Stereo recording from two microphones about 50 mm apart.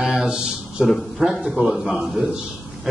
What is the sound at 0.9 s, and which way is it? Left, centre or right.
A man's voice, centre.